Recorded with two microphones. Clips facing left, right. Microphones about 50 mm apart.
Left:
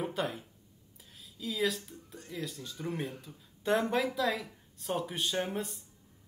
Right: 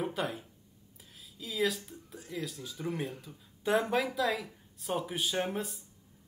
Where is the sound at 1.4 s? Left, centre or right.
Centre.